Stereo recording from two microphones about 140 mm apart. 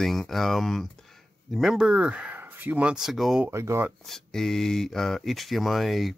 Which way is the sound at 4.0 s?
Centre (ahead or behind).